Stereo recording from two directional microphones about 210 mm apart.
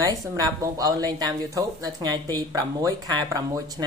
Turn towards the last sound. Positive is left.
turn(degrees=-15)  # may be behind; listen again after turning